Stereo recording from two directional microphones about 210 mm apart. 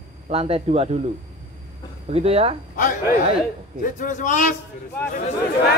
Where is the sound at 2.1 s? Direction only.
30° right (ahead or behind).